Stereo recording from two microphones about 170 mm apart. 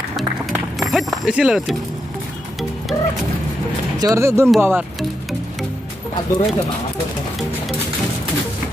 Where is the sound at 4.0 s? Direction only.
20° right (ahead or behind).